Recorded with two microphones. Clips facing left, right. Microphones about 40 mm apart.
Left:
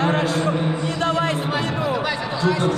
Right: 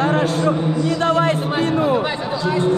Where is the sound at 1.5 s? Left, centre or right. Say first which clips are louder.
Right 5 dB; right.